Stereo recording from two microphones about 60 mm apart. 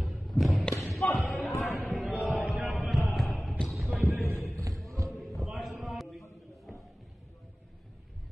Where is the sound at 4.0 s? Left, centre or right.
Right.